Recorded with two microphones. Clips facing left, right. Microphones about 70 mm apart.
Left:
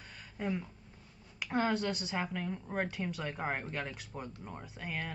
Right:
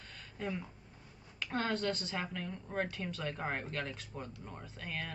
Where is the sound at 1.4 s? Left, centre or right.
Centre.